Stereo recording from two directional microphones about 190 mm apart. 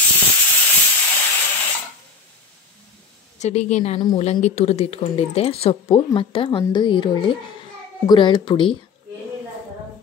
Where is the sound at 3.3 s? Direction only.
35° left (ahead or behind).